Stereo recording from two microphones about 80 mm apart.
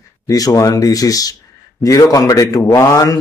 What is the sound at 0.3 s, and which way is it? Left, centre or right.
Speech, left.